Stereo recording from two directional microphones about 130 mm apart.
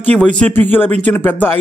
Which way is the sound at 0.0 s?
10° left (ahead or behind).